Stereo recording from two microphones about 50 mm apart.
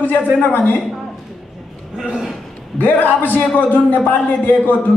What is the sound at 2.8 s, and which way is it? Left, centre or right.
A man's voice, left.